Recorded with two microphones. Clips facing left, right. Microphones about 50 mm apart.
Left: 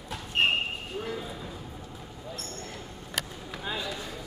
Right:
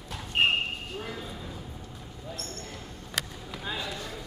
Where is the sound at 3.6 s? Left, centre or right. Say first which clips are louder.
Left 1 dB; centre.